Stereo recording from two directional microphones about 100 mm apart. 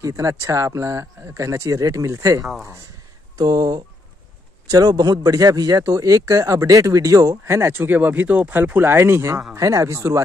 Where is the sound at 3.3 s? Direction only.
40° right (ahead or behind).